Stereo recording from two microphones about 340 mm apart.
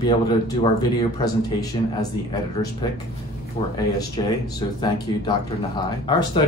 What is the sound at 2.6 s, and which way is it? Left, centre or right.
Speech, centre.